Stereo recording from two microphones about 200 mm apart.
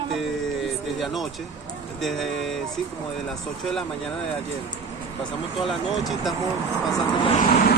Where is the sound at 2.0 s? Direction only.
Centre (ahead or behind).